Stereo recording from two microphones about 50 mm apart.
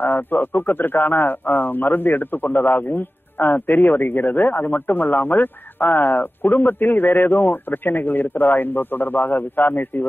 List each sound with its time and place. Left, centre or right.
0.0 s speech: left